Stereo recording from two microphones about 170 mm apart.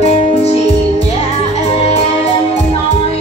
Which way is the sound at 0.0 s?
40° left (ahead or behind).